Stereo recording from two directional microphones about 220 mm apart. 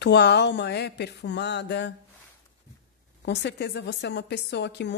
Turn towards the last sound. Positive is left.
turn(degrees=50)  # may be behind; listen again after turning